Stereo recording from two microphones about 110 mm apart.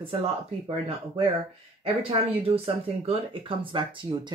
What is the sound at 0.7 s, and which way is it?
Speech, 60° right (ahead or behind).